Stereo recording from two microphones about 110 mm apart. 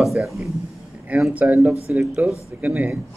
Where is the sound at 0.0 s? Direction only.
Centre (ahead or behind).